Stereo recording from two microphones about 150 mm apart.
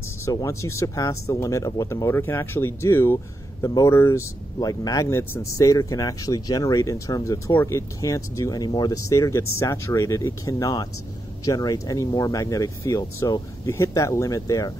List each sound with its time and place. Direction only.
0.2 s speech: 20° left (ahead or behind)